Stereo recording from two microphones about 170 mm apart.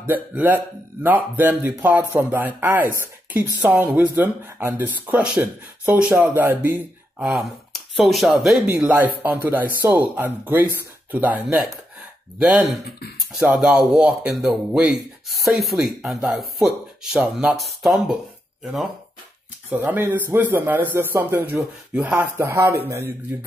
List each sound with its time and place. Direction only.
0.0 s speech: 10° right (ahead or behind)
8.6 s speech: 10° right (ahead or behind)